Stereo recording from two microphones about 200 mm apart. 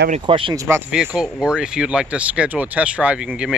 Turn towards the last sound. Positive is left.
turn(degrees=-5)  # may be behind; listen again after turning